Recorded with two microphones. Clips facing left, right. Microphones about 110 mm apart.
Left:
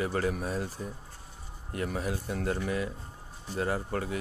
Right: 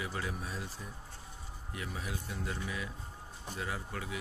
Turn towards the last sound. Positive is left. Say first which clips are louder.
# left 8 dB
turn(degrees=45)  # may be behind; listen again after turning